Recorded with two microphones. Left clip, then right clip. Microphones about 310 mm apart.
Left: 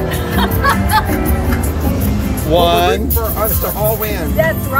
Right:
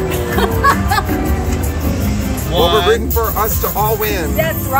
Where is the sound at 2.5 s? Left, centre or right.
Left.